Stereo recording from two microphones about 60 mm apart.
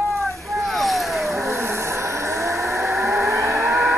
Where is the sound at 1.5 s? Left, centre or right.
Right.